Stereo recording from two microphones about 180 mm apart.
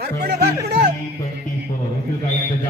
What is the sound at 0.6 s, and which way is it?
Speech, 65° right (ahead or behind).